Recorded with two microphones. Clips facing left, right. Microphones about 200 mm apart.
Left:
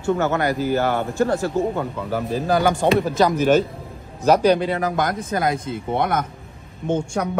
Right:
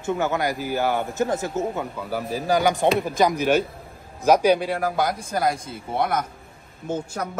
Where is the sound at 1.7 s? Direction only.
5° right (ahead or behind).